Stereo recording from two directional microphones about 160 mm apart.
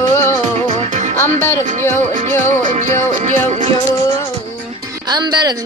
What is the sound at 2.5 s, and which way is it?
Music, 50° right (ahead or behind).